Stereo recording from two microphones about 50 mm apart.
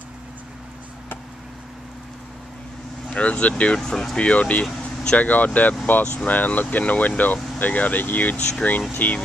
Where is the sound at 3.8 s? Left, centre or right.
Centre.